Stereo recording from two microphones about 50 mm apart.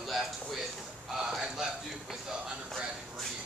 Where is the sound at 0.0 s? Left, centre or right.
Centre.